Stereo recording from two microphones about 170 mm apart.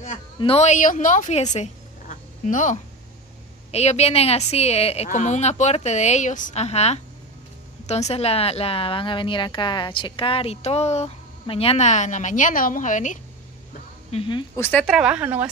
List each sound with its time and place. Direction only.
0.4 s a woman's voice: 35° left (ahead or behind)
14.1 s speech: 30° left (ahead or behind)
14.5 s a woman's voice: 10° left (ahead or behind); by 15.4 s 10° right (ahead or behind)